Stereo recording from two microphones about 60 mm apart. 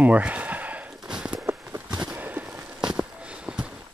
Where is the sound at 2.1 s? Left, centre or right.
Right.